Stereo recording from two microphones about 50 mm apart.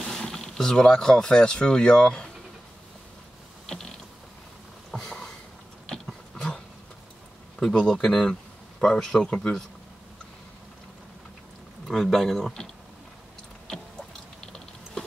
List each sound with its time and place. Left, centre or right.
0.0 s speech: centre
3.6 s creak: centre
4.9 s a sound: centre
6.3 s a sound: centre
7.7 s speech: centre
11.9 s speech: centre